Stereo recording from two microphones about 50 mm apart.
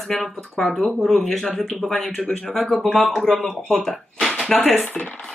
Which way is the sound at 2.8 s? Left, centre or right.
Centre.